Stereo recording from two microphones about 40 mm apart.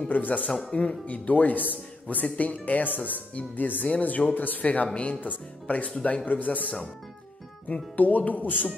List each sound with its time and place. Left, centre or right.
0.1 s speech: left
0.5 s speech: centre
0.7 s a man's voice: left
6.2 s a man's voice: left